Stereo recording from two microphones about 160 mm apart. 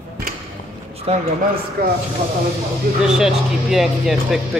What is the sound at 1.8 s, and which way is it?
Speech, 75° right (ahead or behind).